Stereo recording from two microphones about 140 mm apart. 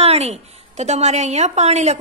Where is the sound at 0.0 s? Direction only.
50° right (ahead or behind).